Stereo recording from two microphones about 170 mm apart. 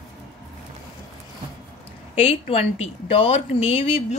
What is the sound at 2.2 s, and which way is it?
Speech, 35° left (ahead or behind).